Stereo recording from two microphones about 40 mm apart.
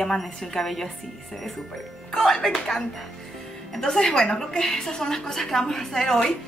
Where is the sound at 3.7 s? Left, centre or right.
Centre.